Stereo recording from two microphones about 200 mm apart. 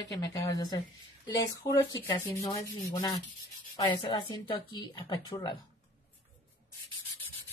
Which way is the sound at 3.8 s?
20° left (ahead or behind).